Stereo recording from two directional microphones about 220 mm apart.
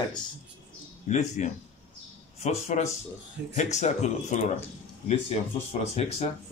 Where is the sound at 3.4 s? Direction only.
50° right (ahead or behind).